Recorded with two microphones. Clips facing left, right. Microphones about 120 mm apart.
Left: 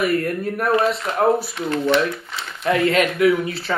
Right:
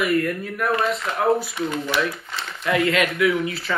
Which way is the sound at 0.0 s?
35° left (ahead or behind).